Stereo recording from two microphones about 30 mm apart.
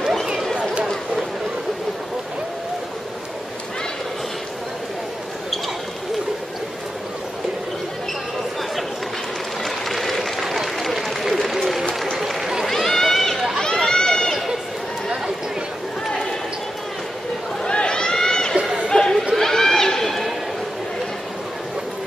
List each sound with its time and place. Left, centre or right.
0.0 s a sound: centre
9.7 s a sound: centre
12.2 s run: centre
12.6 s run: centre
17.6 s run: left
18.1 s a sound: left
18.6 s chatter: right
18.9 s chatter: left
19.3 s neigh: centre